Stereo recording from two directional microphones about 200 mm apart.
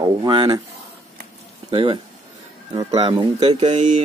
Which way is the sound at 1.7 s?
25° right (ahead or behind).